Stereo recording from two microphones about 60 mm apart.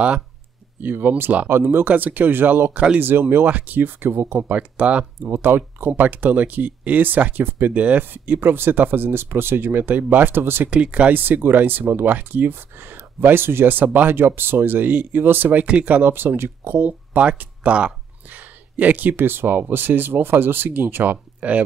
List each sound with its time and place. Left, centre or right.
0.8 s speech: right
4.4 s speech: right
5.2 s speech: right
10.7 s speech: right
11.1 s speech: right
14.1 s speech: right
15.6 s speech: right